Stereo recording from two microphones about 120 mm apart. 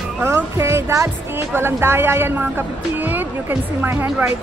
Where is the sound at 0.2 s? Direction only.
20° right (ahead or behind).